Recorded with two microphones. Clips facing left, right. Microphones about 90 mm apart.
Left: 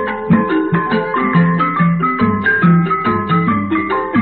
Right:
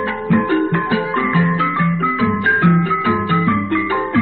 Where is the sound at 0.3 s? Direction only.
30° left (ahead or behind).